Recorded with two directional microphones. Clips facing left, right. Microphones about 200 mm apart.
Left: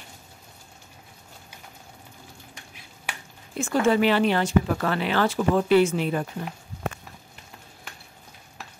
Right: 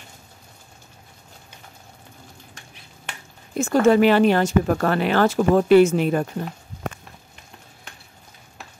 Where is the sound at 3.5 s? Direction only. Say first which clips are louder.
Right 5 dB; 40° right (ahead or behind).